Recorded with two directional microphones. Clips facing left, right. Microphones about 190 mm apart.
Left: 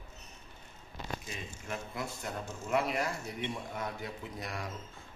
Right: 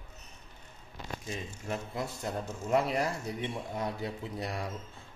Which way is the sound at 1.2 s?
35° right (ahead or behind).